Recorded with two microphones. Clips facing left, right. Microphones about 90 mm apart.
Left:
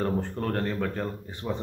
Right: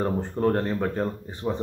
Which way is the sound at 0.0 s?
20° right (ahead or behind).